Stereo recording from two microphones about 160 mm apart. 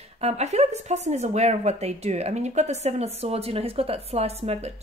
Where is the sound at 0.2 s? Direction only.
45° right (ahead or behind).